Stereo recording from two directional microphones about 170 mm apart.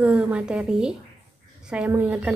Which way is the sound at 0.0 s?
5° right (ahead or behind).